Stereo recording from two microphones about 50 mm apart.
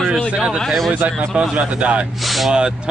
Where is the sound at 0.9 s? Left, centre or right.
Right.